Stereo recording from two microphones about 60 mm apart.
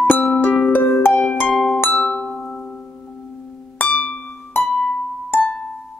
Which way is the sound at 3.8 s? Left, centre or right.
Left.